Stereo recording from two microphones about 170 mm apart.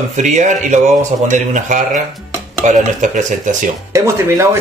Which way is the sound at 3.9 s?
15° right (ahead or behind).